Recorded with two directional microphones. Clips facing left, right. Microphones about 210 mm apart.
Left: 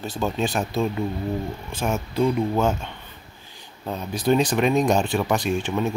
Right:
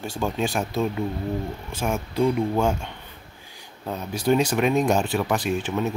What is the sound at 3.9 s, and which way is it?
Speech, 10° right (ahead or behind).